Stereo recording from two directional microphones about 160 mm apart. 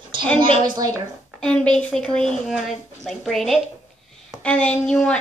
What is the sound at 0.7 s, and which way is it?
Speech, 25° right (ahead or behind).